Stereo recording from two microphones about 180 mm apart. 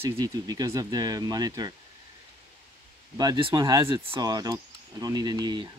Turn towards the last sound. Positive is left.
turn(degrees=-25)  # may be behind; listen again after turning